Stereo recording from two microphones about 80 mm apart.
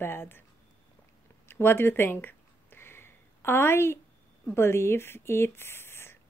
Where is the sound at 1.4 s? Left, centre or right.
Left.